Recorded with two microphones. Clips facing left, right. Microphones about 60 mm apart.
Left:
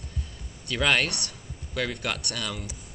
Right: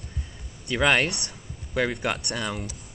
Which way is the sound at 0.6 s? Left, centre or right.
Right.